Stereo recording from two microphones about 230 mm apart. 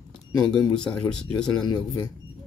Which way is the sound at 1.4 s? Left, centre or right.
Centre.